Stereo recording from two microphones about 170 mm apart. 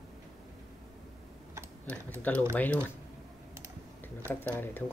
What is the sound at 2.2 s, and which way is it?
Speech, 10° left (ahead or behind).